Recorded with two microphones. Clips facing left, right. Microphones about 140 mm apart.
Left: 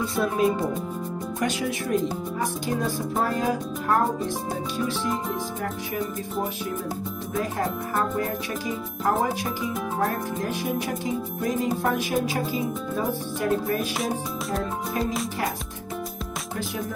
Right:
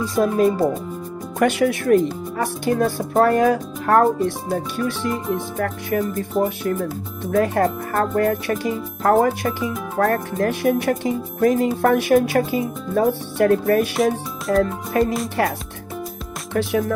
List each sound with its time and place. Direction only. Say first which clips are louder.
0.0 s speech: right 5 dB; 40° right (ahead or behind)
1.4 s speech: right 10 dB; 65° right (ahead or behind)
7.2 s speech: right 10 dB; 70° right (ahead or behind)
13.7 s speech: right 8 dB; centre (ahead or behind)
15.0 s speech: right 9 dB; 75° right (ahead or behind)